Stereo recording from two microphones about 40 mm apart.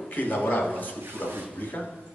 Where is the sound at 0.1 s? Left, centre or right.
Left.